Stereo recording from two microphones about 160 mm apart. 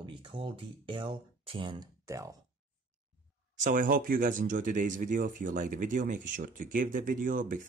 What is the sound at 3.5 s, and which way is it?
Speech, 55° right (ahead or behind).